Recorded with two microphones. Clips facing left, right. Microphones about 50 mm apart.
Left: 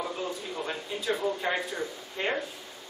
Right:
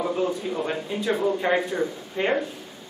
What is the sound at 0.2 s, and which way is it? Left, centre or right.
A man's voice, centre.